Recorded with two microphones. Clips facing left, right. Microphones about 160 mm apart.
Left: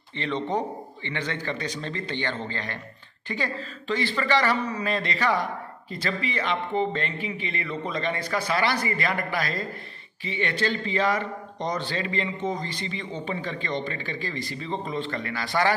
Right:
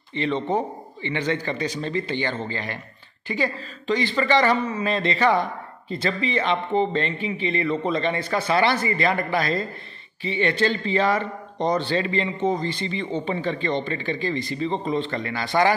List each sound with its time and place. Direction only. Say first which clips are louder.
0.1 s a man's voice: right 4 dB; 10° right (ahead or behind)